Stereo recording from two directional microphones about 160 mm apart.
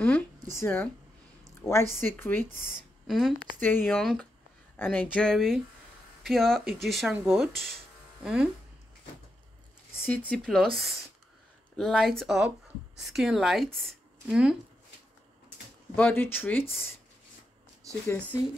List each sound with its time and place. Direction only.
0.0 s speech: 10° left (ahead or behind)
1.4 s a sound: 15° left (ahead or behind)
2.0 s speech: 15° left (ahead or behind)
2.5 s speech: 55° right (ahead or behind)
3.1 s speech: centre (ahead or behind)
3.6 s speech: 10° left (ahead or behind)
3.9 s speech: centre (ahead or behind)
4.7 s speech: 10° left (ahead or behind); by 8.5 s 5° right (ahead or behind)
9.9 s speech: 10° left (ahead or behind)
16.0 s speech: 10° left (ahead or behind)